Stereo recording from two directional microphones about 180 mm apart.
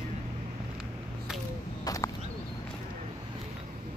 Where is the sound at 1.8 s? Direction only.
20° left (ahead or behind).